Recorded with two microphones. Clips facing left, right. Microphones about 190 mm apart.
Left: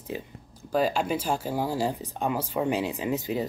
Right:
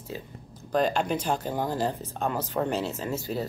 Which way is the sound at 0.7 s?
5° left (ahead or behind).